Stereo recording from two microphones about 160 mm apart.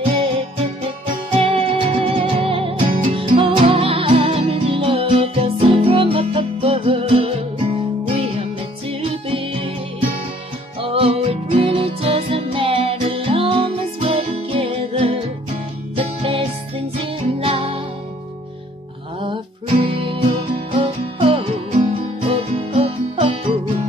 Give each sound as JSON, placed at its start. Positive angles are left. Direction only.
{"t": 1.3, "sound": "music", "side_deg": -35}
{"t": 19.2, "sound": "music", "side_deg": -35}